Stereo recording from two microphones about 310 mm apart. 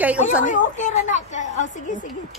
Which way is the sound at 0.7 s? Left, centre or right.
Left.